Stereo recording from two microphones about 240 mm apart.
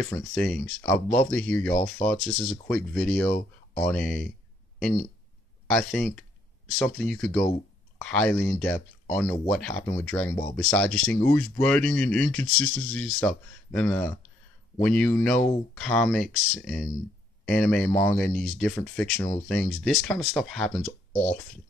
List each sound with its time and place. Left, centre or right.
0.0 s speech: centre
21.1 s speech: left